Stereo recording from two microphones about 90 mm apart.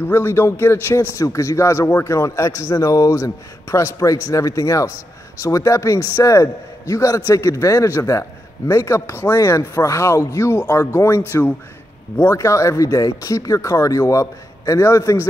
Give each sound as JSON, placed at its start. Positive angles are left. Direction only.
{"t": 0.1, "sound": "a man's voice", "side_deg": 25}
{"t": 9.2, "sound": "chopping", "side_deg": 45}
{"t": 9.8, "sound": "a man's voice", "side_deg": 35}